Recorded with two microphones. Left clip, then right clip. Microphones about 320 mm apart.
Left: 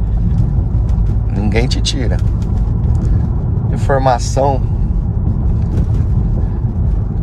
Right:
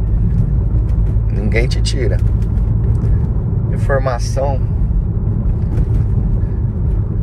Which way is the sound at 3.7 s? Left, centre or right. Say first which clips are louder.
Left 5 dB; centre.